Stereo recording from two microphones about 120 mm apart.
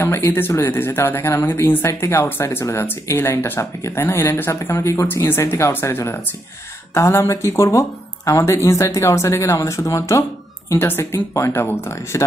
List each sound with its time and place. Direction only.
0.0 s speech: 20° left (ahead or behind)